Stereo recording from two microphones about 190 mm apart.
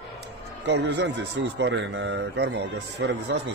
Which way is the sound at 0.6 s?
65° right (ahead or behind).